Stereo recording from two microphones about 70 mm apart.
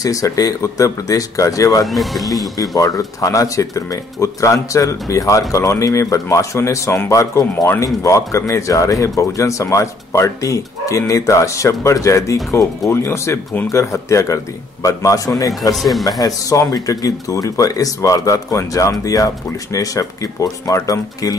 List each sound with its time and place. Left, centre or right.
0.0 s a man's voice: left
1.9 s speech: centre
2.5 s a man's voice: left